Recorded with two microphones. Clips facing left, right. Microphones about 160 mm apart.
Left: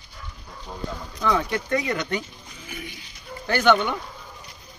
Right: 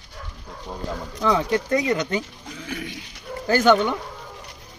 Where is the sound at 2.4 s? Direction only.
90° right.